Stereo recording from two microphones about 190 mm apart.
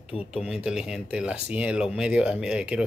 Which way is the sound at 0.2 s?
5° right (ahead or behind).